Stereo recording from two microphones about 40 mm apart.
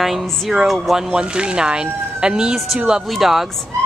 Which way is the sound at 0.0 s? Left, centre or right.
Centre.